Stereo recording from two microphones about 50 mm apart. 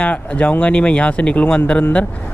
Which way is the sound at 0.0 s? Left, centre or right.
Left.